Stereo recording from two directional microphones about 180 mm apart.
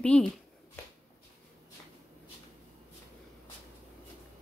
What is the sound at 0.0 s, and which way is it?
Speech, 5° left (ahead or behind).